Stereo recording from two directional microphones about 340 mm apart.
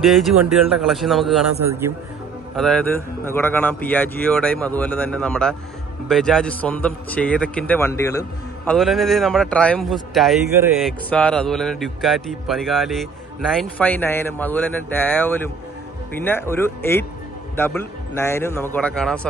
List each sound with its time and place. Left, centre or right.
0.0 s a man's voice: centre